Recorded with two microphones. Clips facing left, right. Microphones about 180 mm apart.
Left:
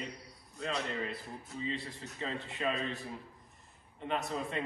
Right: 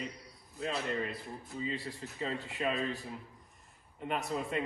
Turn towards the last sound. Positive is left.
turn(degrees=-5)  # may be behind; listen again after turning